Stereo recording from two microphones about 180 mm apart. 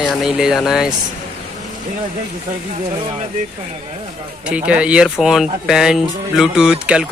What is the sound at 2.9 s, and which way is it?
Speech, 30° right (ahead or behind).